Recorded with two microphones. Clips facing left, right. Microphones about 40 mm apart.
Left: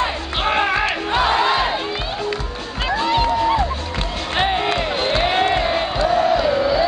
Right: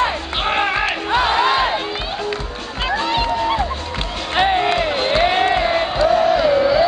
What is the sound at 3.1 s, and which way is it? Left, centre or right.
Music, right.